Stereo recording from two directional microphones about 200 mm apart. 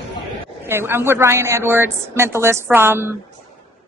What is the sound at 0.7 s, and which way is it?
A woman's voice, 10° right (ahead or behind).